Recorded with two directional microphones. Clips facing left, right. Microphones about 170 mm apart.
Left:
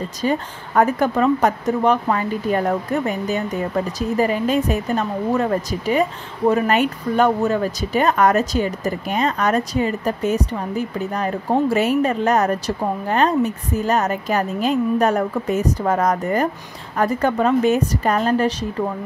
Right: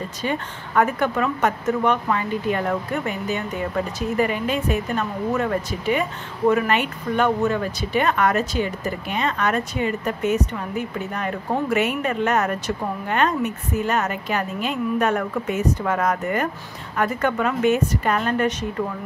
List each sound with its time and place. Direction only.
0.2 s speech: 40° left (ahead or behind)